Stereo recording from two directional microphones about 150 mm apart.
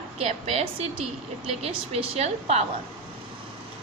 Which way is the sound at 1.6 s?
45° right (ahead or behind).